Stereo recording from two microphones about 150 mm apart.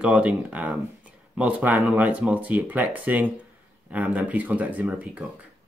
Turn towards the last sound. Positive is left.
turn(degrees=-10)  # may be behind; listen again after turning